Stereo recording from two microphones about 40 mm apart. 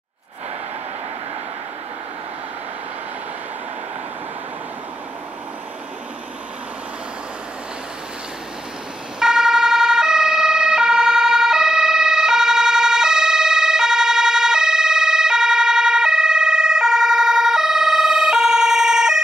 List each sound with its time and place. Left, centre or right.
9.2 s emergency vehicle: centre